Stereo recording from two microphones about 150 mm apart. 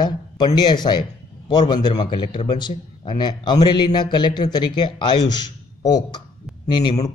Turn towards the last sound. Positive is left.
turn(degrees=30)  # may be behind; listen again after turning